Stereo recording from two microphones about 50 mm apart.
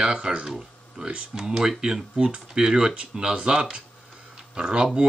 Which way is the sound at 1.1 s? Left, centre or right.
Right.